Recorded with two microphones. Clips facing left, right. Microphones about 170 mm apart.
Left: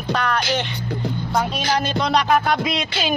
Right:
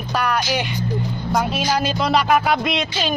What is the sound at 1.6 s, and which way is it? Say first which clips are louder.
Music: right 1 dB; 5° right (ahead or behind).